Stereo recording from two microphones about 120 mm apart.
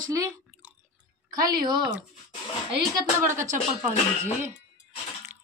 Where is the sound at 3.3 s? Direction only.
20° right (ahead or behind).